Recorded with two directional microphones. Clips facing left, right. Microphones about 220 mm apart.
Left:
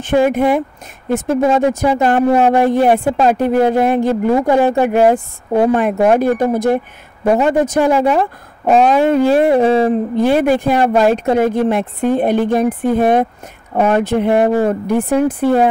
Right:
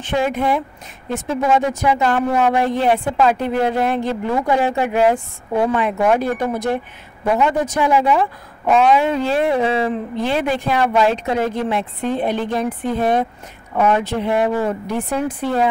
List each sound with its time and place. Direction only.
0.0 s a woman's voice: 50° left (ahead or behind)